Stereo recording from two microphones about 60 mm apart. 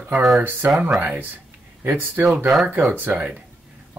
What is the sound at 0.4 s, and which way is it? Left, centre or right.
Speech, right.